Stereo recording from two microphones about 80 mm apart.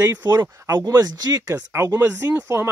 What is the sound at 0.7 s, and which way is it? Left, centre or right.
Speech, right.